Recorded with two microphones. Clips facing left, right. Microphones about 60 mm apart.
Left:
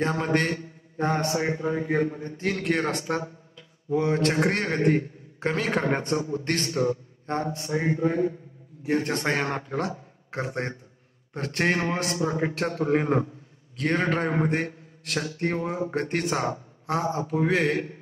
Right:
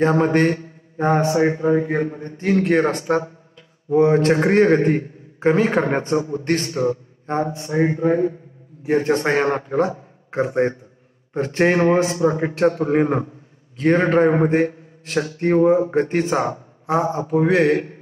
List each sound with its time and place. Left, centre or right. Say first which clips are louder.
0.0 s a man's voice: right 8 dB; right
10.3 s a man's voice: right 11 dB; centre
11.7 s a man's voice: right 10 dB; right
16.8 s a man's voice: right 6 dB; centre